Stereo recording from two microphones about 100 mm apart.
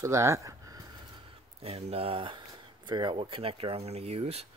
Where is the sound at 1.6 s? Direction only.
75° right (ahead or behind); by 2.4 s 60° right (ahead or behind).